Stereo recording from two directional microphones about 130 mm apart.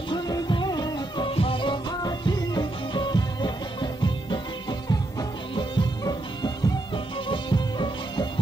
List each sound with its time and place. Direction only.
0.1 s music: 30° left (ahead or behind)